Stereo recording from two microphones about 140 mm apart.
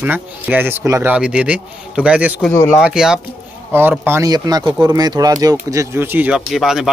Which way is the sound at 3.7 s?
15° right (ahead or behind).